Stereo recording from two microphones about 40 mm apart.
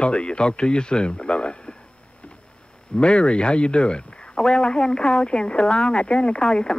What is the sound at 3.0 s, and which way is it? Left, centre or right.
Speech, left.